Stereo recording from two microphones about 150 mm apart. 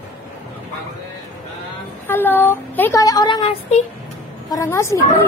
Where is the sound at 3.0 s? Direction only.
25° left (ahead or behind).